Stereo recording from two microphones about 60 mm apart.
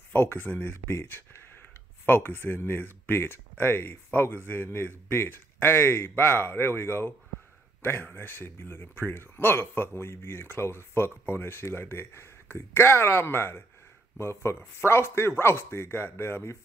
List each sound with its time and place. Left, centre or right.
0.1 s speech: left